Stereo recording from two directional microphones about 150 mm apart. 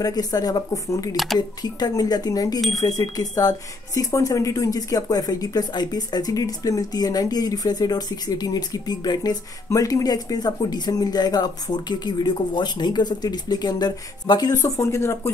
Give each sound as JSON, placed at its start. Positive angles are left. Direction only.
{"t": 0.0, "sound": "speech", "side_deg": 25}
{"t": 1.1, "sound": "speech", "side_deg": 0}
{"t": 1.6, "sound": "speech", "side_deg": 25}